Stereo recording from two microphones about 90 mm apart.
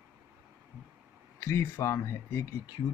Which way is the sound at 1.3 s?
30° left (ahead or behind).